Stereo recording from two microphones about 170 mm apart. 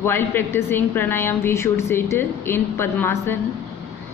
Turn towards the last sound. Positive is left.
turn(degrees=15)  # may be behind; listen again after turning